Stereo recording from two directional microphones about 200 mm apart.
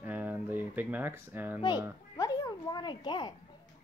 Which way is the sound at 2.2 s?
20° left (ahead or behind).